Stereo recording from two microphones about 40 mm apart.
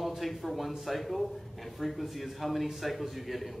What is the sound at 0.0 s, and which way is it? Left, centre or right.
A man's voice, centre.